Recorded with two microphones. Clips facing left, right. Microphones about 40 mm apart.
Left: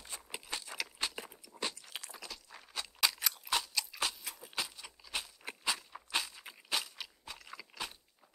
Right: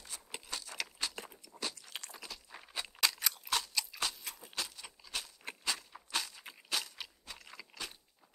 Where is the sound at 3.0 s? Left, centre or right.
Centre.